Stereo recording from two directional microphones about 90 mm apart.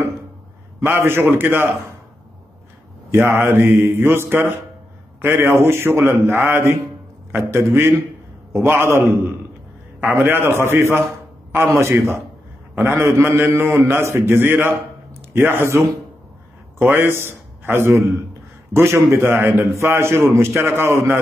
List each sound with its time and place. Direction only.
0.8 s a man's voice: 25° right (ahead or behind)
3.1 s a man's voice: 25° right (ahead or behind)
8.6 s a man's voice: 25° right (ahead or behind)